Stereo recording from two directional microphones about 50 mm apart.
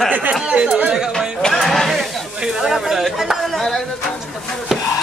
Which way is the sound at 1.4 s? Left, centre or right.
Centre.